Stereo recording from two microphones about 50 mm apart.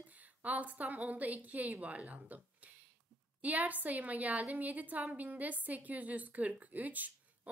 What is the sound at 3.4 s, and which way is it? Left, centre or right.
A woman's voice, right.